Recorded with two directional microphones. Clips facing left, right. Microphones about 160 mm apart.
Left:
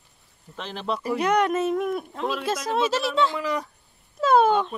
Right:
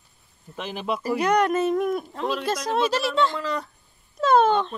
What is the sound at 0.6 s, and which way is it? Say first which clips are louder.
Speech: right 1 dB; 10° right (ahead or behind).